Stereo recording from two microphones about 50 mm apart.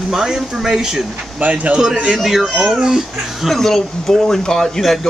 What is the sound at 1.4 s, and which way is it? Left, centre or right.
Speech, right.